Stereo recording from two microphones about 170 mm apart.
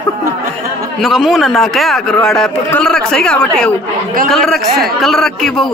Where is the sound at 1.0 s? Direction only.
Centre (ahead or behind).